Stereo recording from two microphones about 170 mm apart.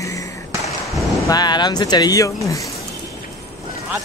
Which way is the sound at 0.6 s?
Centre (ahead or behind).